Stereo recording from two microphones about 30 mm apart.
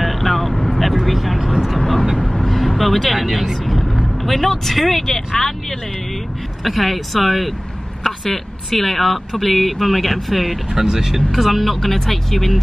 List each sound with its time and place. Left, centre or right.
0.0 s vehicle: centre
1.4 s vehicle: centre
1.7 s vehicle: centre
3.2 s speech: centre
6.6 s speech: centre
10.7 s speech: centre
11.1 s speech: centre